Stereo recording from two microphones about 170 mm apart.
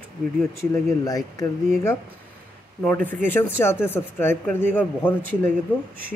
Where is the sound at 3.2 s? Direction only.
15° left (ahead or behind).